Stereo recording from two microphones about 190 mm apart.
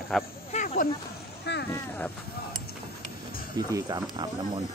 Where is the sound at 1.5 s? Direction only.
70° left (ahead or behind).